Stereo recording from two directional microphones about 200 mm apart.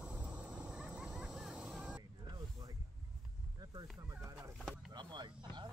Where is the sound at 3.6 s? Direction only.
20° right (ahead or behind).